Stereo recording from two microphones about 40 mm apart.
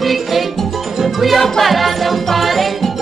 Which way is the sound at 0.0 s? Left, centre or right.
Centre.